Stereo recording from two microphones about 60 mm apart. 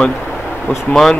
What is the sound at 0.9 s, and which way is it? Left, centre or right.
Speech, centre.